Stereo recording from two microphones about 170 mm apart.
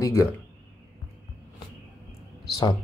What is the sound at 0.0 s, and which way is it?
Speech, 20° left (ahead or behind).